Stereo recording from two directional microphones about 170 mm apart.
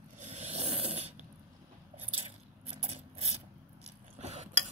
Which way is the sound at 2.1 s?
35° right (ahead or behind).